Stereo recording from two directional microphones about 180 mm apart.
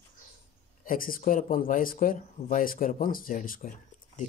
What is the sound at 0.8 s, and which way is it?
Speech, 50° left (ahead or behind).